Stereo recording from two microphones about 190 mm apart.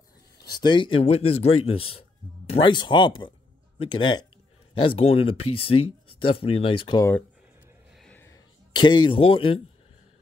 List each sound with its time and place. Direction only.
0.5 s a man's voice: 25° left (ahead or behind)
8.0 s music: 10° left (ahead or behind)
8.7 s speech: 25° left (ahead or behind)